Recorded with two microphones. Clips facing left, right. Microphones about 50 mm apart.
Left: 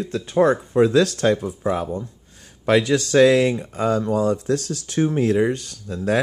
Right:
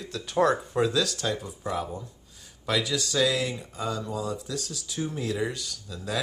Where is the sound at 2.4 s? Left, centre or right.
Left.